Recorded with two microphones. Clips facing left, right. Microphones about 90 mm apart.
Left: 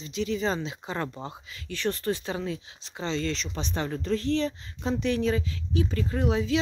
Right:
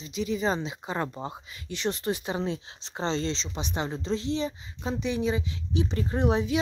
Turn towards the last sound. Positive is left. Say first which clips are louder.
# right 1 dB
turn(degrees=-30)  # may be behind; listen again after turning